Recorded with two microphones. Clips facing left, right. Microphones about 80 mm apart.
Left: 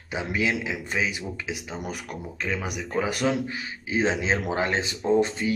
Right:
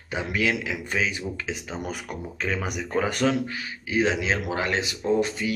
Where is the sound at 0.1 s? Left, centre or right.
Centre.